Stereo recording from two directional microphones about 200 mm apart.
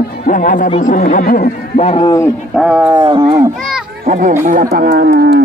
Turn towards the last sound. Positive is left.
turn(degrees=-55)  # may be behind; listen again after turning